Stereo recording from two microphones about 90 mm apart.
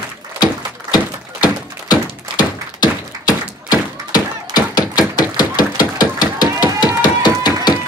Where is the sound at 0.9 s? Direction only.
50° left (ahead or behind).